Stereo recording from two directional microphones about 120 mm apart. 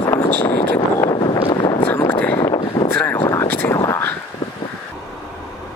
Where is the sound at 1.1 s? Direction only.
40° left (ahead or behind).